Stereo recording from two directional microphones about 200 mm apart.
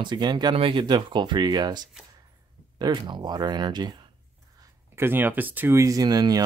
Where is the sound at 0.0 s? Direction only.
20° right (ahead or behind).